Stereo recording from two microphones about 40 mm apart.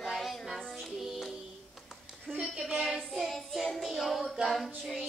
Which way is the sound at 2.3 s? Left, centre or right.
Right.